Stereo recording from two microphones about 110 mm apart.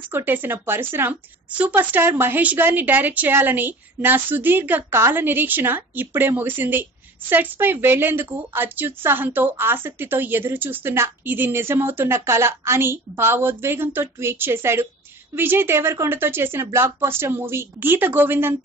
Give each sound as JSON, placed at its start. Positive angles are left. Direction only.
{"t": 0.1, "sound": "a woman's voice", "side_deg": -20}